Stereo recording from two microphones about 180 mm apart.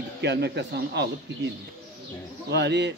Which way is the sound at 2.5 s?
70° right (ahead or behind).